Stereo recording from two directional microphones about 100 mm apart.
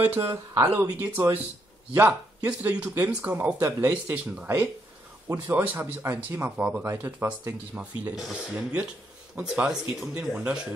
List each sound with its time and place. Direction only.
0.0 s speech: 20° right (ahead or behind)
8.2 s speech: 5° right (ahead or behind)